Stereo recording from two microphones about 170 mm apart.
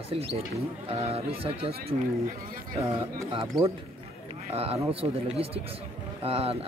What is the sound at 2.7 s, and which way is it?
Speech, 15° right (ahead or behind).